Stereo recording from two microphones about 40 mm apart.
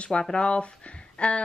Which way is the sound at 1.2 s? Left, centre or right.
Left.